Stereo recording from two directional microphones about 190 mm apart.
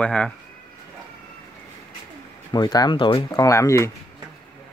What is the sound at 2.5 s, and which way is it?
Speech, 20° left (ahead or behind).